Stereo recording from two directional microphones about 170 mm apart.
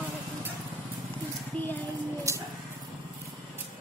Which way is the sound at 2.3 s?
20° right (ahead or behind).